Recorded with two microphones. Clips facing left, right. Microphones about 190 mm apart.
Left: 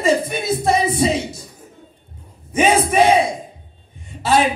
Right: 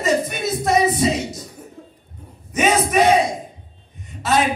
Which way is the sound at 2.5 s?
30° left (ahead or behind).